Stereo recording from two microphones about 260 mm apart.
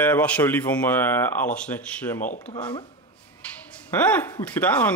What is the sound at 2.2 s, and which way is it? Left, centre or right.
Speech, left.